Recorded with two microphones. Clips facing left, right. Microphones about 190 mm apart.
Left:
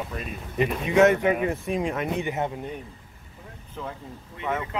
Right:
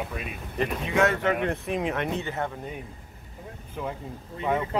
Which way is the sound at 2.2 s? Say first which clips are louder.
Left 3 dB; 20° left (ahead or behind).